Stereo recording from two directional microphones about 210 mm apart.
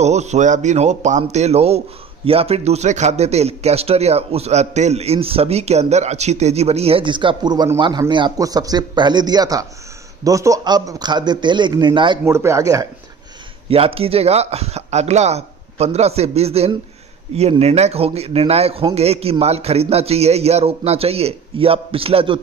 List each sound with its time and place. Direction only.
0.0 s a man's voice: 30° right (ahead or behind); by 12.8 s 15° right (ahead or behind)
13.7 s a man's voice: 25° right (ahead or behind)